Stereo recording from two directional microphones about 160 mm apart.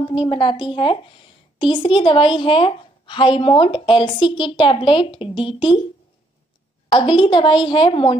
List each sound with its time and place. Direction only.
0.1 s a woman's voice: 30° left (ahead or behind)
6.9 s a woman's voice: 30° left (ahead or behind)